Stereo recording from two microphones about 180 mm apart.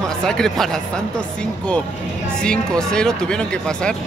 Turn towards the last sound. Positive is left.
turn(degrees=5)  # may be behind; listen again after turning